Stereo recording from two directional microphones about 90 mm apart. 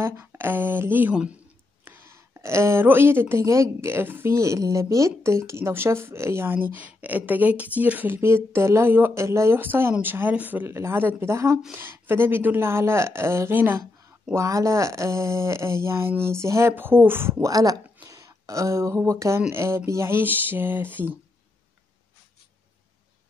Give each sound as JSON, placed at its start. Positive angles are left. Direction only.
{"t": 0.0, "sound": "speech", "side_deg": -30}
{"t": 1.1, "sound": "speech", "side_deg": -10}
{"t": 1.9, "sound": "a woman's voice", "side_deg": -30}
{"t": 14.3, "sound": "a woman's voice", "side_deg": -35}
{"t": 17.5, "sound": "a woman's voice", "side_deg": -40}